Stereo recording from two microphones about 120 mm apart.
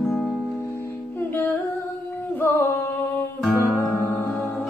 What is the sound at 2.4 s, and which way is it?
Singing, 20° left (ahead or behind).